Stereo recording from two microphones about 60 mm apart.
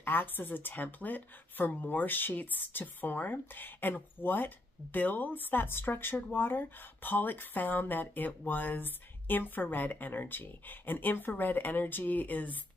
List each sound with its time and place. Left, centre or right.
0.0 s speech: left